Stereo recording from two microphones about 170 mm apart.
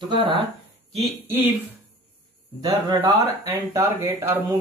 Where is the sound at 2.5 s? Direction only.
25° right (ahead or behind).